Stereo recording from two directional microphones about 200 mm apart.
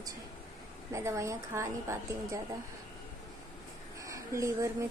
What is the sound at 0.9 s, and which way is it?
Speech, 15° right (ahead or behind).